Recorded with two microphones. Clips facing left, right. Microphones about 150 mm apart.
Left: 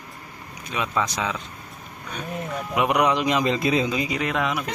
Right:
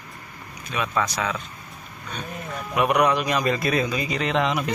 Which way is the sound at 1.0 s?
20° left (ahead or behind).